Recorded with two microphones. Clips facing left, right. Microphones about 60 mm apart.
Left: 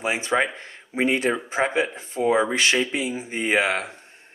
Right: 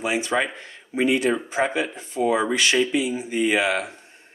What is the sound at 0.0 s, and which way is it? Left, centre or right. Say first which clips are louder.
Speech: even; left.